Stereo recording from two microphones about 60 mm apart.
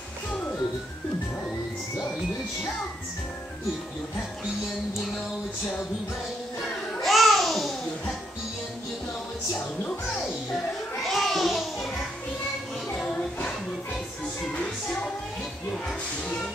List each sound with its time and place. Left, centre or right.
7.0 s babbling: centre
10.2 s music: centre
12.9 s music: centre
14.5 s music: centre